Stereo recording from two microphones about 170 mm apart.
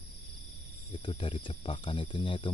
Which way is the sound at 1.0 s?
30° left (ahead or behind).